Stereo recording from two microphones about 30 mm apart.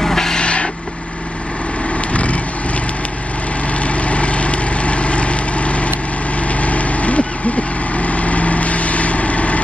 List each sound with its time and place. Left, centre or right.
0.0 s vehicle: centre
0.4 s vehicle: left
3.8 s vehicle: left